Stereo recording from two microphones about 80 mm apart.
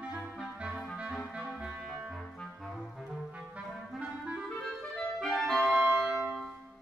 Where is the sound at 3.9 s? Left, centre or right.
Centre.